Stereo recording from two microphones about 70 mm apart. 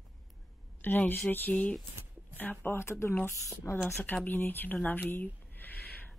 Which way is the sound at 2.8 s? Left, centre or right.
Left.